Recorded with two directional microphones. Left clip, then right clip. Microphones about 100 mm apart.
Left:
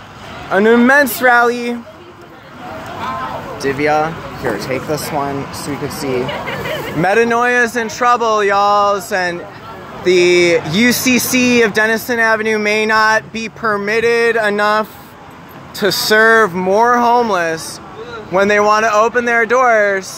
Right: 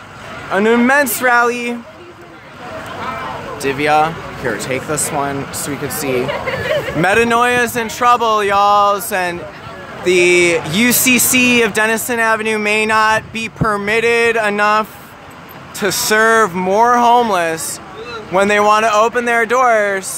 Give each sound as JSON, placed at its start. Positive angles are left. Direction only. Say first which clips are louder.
{"t": 0.5, "sound": "speech", "louder": "left 2 dB", "side_deg": 15}
{"t": 3.6, "sound": "speech", "louder": "right 1 dB", "side_deg": -20}
{"t": 7.4, "sound": "speech", "louder": "left 1 dB", "side_deg": 0}
{"t": 13.7, "sound": "a sound", "louder": "even", "side_deg": -10}
{"t": 14.6, "sound": "speech", "louder": "right 1 dB", "side_deg": 5}